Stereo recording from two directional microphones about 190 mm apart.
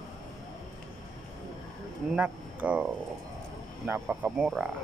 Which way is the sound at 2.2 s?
5° right (ahead or behind).